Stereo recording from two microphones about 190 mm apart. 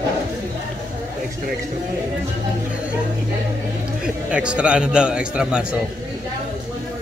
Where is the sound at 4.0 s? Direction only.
5° right (ahead or behind).